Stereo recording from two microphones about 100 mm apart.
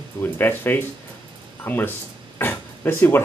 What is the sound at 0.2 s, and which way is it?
Speech, 20° left (ahead or behind).